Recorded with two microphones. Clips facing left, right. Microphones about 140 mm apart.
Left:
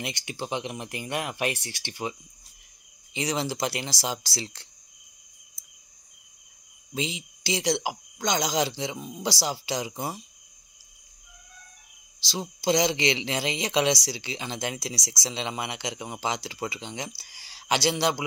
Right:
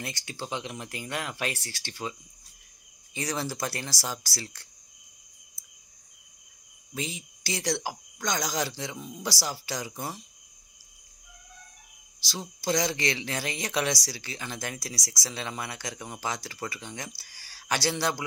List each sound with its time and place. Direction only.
0.0 s speech: 20° left (ahead or behind)
5.6 s cricket: 20° left (ahead or behind)
6.9 s speech: 20° left (ahead or behind)
12.3 s speech: 20° left (ahead or behind)